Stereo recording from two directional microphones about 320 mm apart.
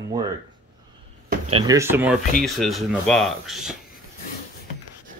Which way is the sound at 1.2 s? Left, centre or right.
Centre.